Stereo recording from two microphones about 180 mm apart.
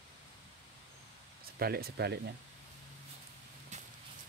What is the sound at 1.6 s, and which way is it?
Speech, 60° right (ahead or behind).